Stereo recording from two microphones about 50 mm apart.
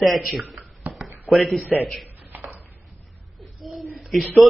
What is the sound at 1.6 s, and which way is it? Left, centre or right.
Speech, centre.